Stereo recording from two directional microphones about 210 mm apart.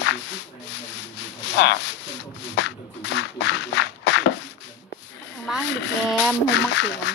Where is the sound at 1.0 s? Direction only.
55° left (ahead or behind).